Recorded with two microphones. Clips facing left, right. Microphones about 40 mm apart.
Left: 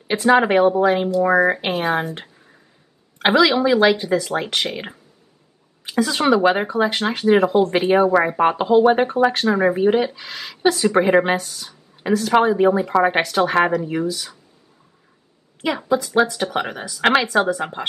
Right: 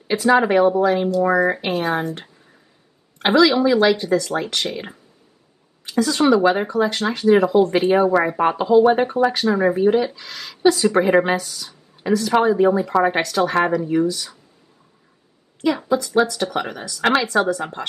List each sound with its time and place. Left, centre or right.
0.3 s speech: left
1.0 s speech: centre
1.9 s speech: centre
3.3 s speech: centre
6.2 s speech: left
7.1 s speech: left
8.6 s speech: left
9.0 s speech: centre
11.4 s a sound: left
12.2 s speech: centre
15.6 s speech: centre